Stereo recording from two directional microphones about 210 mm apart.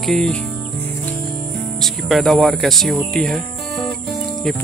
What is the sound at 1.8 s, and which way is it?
Speech, centre (ahead or behind).